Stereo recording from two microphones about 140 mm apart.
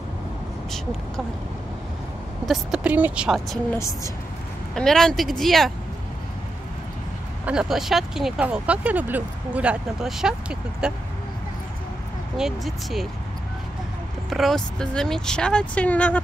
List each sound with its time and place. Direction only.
2.4 s speech: 5° right (ahead or behind)
3.7 s speech: 20° left (ahead or behind)
4.7 s speech: 5° left (ahead or behind)
7.4 s speech: 5° right (ahead or behind)
12.4 s speech: centre (ahead or behind)
14.3 s speech: centre (ahead or behind)